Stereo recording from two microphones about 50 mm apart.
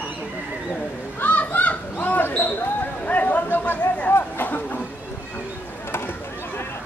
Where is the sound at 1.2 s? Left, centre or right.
Left.